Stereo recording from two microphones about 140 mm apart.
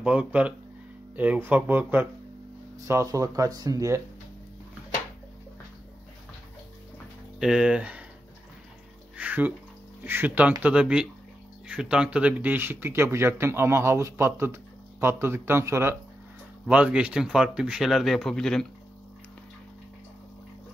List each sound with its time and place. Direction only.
0.0 s speech: 10° right (ahead or behind)
7.3 s speech: 5° right (ahead or behind)
9.1 s a sound: 10° right (ahead or behind)
10.0 s speech: 15° right (ahead or behind); by 18.7 s 5° left (ahead or behind)